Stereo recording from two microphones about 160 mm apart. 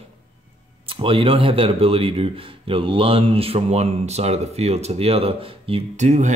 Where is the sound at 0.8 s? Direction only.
35° right (ahead or behind).